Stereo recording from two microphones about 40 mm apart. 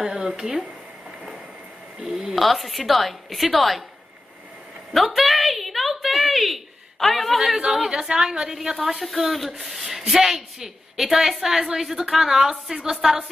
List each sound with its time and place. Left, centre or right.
0.0 s speech: right
2.3 s a woman's voice: centre
4.9 s a sound: centre
7.7 s speech: centre